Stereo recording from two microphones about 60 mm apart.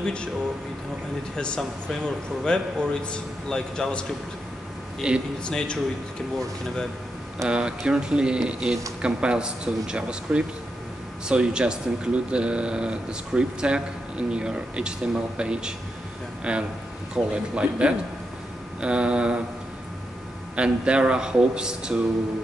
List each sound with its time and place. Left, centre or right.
0.0 s speech: centre
1.3 s a man's voice: centre
5.0 s speech: centre
5.4 s a man's voice: centre
7.4 s speech: centre
20.5 s speech: centre